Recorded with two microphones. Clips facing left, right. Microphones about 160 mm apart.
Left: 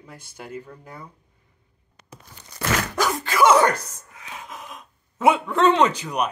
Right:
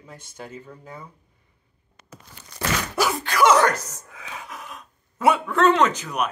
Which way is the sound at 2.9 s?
5° right (ahead or behind).